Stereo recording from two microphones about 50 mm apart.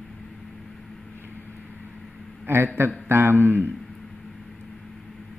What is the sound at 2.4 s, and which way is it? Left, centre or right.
Speech, right.